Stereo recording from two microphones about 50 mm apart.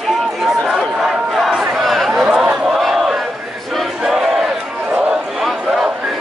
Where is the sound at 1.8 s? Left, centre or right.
Centre.